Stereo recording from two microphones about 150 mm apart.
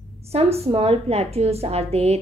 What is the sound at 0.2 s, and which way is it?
A woman's voice, 45° right (ahead or behind).